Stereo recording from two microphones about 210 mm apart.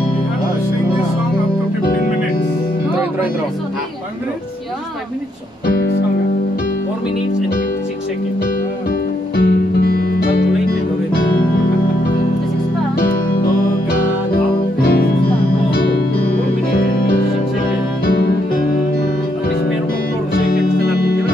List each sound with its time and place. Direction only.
9.4 s music: 50° left (ahead or behind)
14.3 s music: 45° left (ahead or behind)
18.0 s music: 45° left (ahead or behind)
20.3 s music: 45° left (ahead or behind)